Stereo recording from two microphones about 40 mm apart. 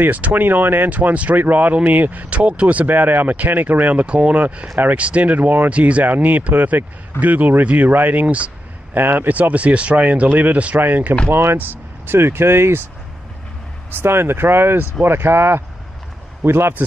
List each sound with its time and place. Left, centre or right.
0.1 s speech: right
0.8 s speech: right
4.0 s speech: right
5.8 s speech: right
6.0 s speech: right
8.9 s speech: right
9.3 s speech: right
11.2 s speech: right
11.5 s speech: right
12.2 s speech: right
13.9 s speech: right
15.0 s speech: right
16.4 s speech: right